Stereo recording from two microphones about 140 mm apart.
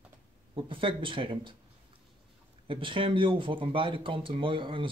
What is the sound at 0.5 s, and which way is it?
Speech, 35° right (ahead or behind).